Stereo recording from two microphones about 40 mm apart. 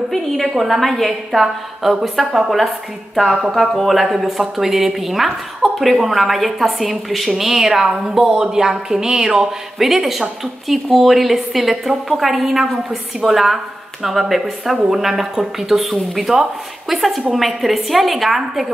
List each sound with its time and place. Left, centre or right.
0.1 s speech: centre
1.4 s speech: centre
3.7 s speech: centre